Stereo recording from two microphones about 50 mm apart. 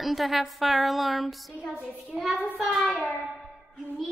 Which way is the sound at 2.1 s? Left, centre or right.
Centre.